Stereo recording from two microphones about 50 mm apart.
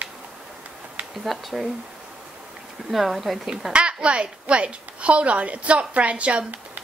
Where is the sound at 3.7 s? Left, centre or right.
Right.